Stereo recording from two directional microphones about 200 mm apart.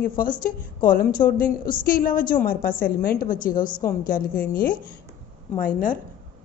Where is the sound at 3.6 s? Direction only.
20° left (ahead or behind).